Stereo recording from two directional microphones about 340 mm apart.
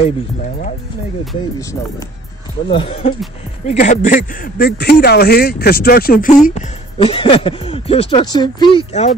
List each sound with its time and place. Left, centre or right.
1.2 s speech: centre